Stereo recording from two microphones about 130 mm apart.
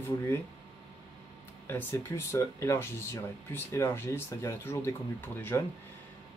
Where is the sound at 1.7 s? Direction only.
15° left (ahead or behind).